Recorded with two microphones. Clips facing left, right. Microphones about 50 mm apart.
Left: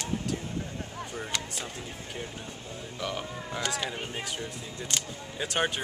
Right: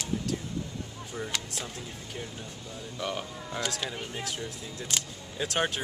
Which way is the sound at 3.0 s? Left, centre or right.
Centre.